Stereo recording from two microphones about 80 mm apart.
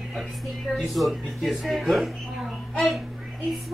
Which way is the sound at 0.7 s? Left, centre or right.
Centre.